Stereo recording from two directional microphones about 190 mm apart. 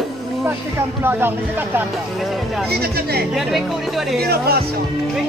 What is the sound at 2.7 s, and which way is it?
Speech, 55° right (ahead or behind).